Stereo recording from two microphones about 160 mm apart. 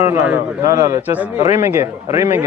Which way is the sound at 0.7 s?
20° right (ahead or behind).